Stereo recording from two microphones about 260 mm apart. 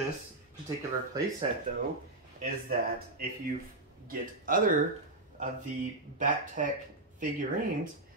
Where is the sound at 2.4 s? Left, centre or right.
Right.